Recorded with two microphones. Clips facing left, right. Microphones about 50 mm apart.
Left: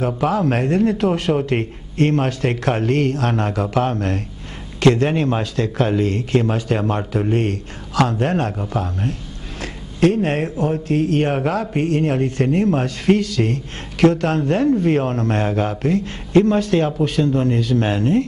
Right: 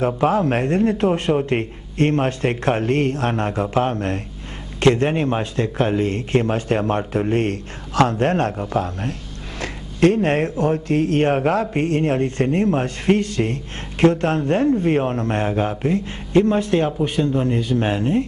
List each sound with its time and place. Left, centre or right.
0.0 s speech: right